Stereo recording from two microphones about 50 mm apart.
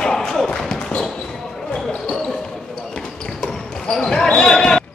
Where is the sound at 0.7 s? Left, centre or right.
Centre.